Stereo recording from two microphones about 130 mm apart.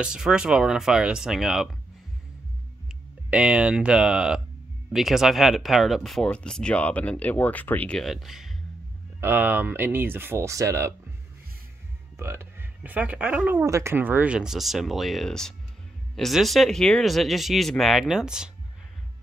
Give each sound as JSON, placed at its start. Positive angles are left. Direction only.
{"t": 0.0, "sound": "speech", "side_deg": -5}
{"t": 3.3, "sound": "speech", "side_deg": -10}
{"t": 8.0, "sound": "speech", "side_deg": 0}
{"t": 9.2, "sound": "speech", "side_deg": -15}
{"t": 12.2, "sound": "speech", "side_deg": -15}
{"t": 13.7, "sound": "speech", "side_deg": -20}